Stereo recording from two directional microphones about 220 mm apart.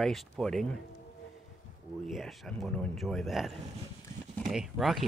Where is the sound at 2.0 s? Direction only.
Centre (ahead or behind).